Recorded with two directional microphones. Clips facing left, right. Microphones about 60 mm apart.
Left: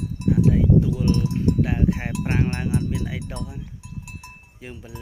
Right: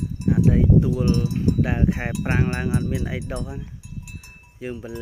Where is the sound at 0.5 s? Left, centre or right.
Right.